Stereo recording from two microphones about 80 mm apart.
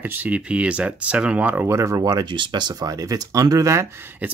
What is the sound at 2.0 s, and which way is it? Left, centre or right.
Speech, right.